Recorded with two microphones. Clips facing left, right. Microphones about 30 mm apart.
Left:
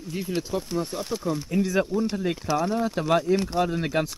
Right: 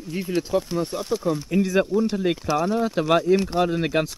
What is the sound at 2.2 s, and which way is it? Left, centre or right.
Speech, centre.